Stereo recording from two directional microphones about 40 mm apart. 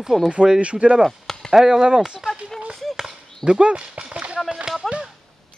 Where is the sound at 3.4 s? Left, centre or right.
Right.